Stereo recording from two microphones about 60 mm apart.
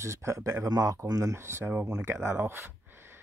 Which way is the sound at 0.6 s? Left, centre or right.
Right.